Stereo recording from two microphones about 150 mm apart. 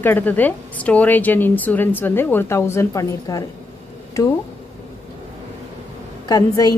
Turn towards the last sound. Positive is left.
turn(degrees=25)  # may be behind; listen again after turning